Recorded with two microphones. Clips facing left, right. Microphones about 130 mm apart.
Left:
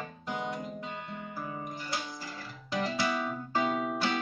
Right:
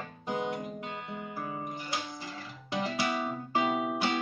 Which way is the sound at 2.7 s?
20° right (ahead or behind).